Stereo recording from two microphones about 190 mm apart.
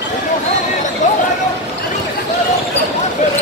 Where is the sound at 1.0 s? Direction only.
40° left (ahead or behind).